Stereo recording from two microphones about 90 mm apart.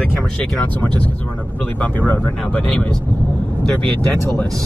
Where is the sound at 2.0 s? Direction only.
20° left (ahead or behind).